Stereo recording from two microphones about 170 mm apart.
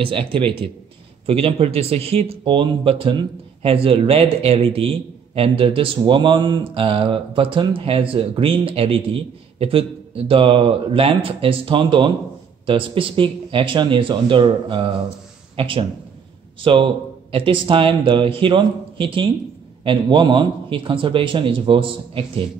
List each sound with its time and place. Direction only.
0.0 s a man's voice: 30° right (ahead or behind)